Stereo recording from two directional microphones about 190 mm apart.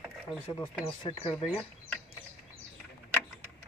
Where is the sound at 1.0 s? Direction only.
20° left (ahead or behind).